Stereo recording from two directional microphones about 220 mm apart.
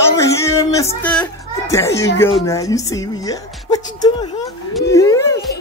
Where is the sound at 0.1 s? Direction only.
15° left (ahead or behind).